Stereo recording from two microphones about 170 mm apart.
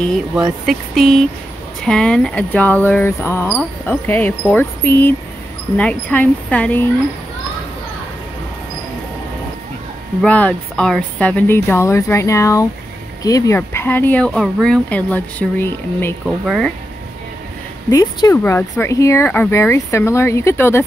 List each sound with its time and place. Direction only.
0.3 s speech: 5° right (ahead or behind)
10.2 s speech: 10° left (ahead or behind)
16.3 s speech: centre (ahead or behind)
17.8 s speech: 20° left (ahead or behind)